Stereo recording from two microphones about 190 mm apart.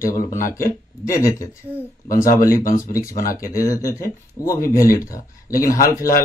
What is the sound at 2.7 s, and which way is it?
Speech, 15° left (ahead or behind).